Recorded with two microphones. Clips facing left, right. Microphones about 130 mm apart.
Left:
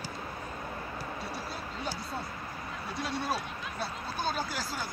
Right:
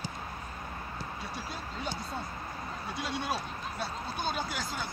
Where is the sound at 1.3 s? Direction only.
5° left (ahead or behind).